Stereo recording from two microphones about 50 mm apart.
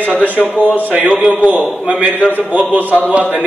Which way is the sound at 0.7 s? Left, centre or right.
Right.